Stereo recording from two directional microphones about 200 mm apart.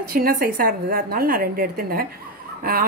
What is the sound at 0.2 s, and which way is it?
Speech, 45° right (ahead or behind).